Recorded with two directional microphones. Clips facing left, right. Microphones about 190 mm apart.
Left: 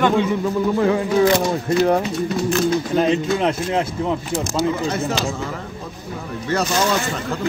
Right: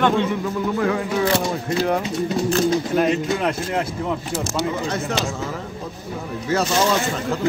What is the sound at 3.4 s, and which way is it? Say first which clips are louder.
Speech: left 3 dB; 25° left (ahead or behind).